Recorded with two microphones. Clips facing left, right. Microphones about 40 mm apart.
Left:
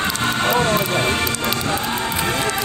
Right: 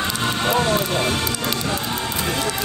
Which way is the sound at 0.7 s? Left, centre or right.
Left.